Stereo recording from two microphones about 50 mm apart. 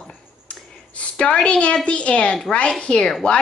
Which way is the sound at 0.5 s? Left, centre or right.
Left.